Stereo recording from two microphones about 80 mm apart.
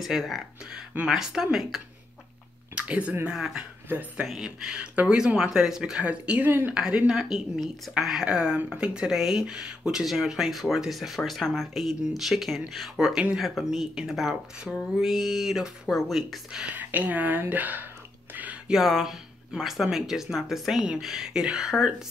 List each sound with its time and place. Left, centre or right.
0.0 s speech: centre
2.7 s a sound: centre
3.3 s speech: centre
16.7 s speech: right
18.3 s a sound: centre
18.7 s speech: centre